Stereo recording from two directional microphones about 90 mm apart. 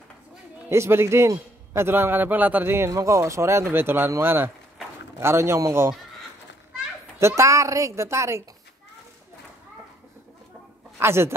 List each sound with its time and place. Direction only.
0.7 s a man's voice: 30° right (ahead or behind)
2.9 s a man's voice: 35° right (ahead or behind)
7.2 s speech: 30° right (ahead or behind)
11.0 s a man's voice: 30° right (ahead or behind)